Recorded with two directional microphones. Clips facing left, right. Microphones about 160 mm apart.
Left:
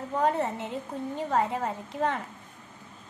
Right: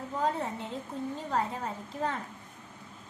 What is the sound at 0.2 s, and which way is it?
A woman's voice, 70° left (ahead or behind).